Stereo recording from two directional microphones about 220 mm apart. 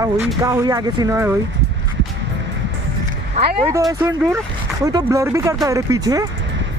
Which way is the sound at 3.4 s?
30° right (ahead or behind).